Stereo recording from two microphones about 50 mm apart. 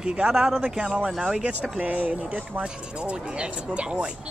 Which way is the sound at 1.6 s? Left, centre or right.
Right.